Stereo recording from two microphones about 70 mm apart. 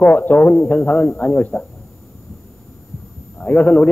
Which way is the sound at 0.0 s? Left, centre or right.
Left.